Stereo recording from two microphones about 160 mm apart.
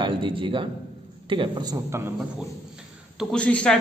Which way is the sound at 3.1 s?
5° right (ahead or behind).